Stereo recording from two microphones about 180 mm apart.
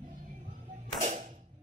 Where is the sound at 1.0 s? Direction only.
45° right (ahead or behind).